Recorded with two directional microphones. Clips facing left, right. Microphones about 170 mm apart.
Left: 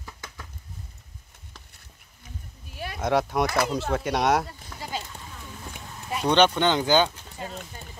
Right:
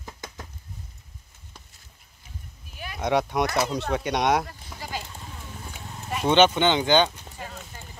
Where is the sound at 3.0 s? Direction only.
Centre (ahead or behind).